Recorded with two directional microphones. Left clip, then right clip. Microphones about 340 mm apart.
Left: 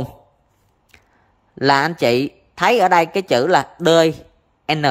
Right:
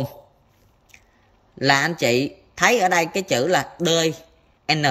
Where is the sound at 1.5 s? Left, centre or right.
Centre.